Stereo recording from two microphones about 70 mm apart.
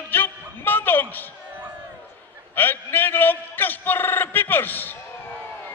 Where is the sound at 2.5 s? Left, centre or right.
Left.